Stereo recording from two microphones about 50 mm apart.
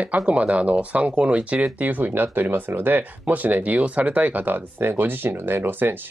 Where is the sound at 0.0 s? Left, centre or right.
Right.